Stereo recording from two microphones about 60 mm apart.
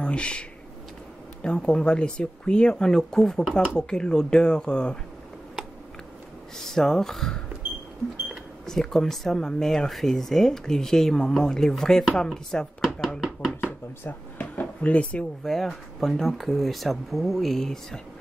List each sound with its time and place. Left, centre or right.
0.0 s speech: centre
1.6 s speech: centre
6.6 s speech: centre
8.6 s speech: centre
13.2 s chopping: centre
14.4 s drawer open or close: left
15.4 s speech: centre